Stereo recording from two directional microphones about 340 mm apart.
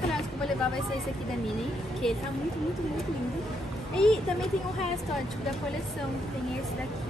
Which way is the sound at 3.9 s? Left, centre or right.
Centre.